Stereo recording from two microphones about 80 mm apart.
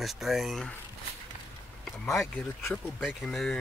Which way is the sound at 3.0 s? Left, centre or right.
Centre.